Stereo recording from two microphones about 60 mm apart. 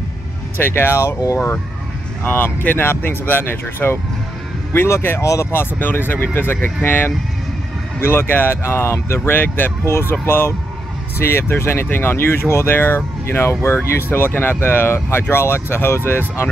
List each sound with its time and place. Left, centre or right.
0.6 s speech: left
2.2 s speech: left
5.2 s speech: left
5.5 s speech: left
8.1 s speech: left